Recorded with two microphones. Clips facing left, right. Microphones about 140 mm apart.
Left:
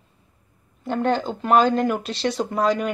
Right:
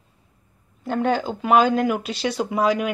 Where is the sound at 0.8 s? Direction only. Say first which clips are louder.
Even; 5° right (ahead or behind).